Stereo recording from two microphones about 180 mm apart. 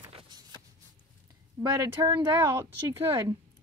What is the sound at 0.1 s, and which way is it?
Shuffle, 25° right (ahead or behind).